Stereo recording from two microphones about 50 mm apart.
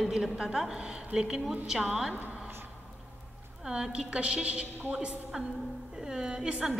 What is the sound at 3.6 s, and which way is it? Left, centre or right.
A woman's voice, centre.